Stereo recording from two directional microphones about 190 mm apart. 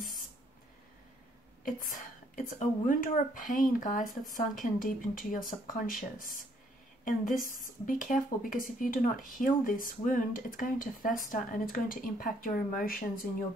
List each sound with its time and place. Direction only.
1.6 s speech: 45° left (ahead or behind)